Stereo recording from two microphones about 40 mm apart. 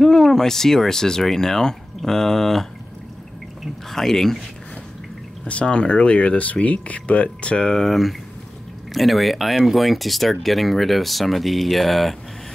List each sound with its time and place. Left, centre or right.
0.0 s speech: centre
3.9 s speech: centre
5.5 s speech: left
7.6 s speech: centre